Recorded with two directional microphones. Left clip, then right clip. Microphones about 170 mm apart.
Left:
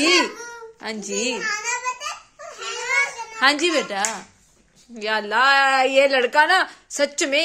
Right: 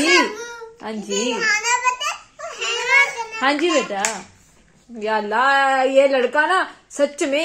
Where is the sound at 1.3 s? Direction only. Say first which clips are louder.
Right 6 dB; 20° right (ahead or behind).